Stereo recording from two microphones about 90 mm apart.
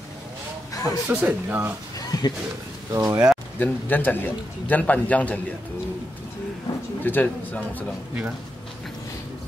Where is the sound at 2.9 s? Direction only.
40° right (ahead or behind).